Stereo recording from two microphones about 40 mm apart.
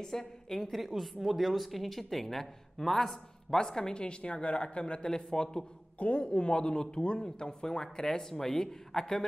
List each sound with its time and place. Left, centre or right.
0.0 s a woman's voice: centre
5.9 s speech: left
6.2 s speech: left